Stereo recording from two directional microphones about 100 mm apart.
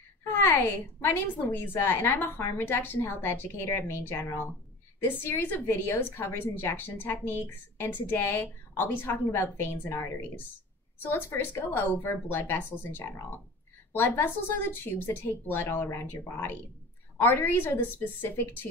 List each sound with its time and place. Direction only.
0.2 s a woman's voice: 25° left (ahead or behind)